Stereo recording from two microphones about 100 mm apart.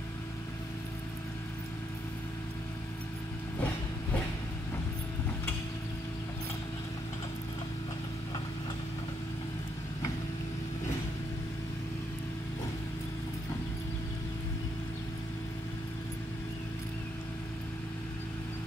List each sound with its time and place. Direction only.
3.5 s vehicle: 15° left (ahead or behind)